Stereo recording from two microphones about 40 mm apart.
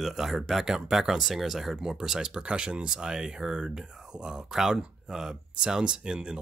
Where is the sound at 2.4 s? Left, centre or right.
Right.